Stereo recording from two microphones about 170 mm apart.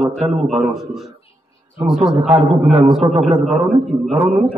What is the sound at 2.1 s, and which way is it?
Speech, 25° right (ahead or behind).